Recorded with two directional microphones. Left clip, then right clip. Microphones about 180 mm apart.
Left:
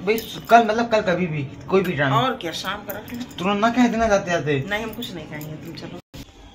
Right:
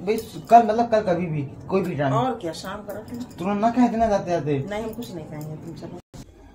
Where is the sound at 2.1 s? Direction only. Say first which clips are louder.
Left 3 dB; 20° right (ahead or behind).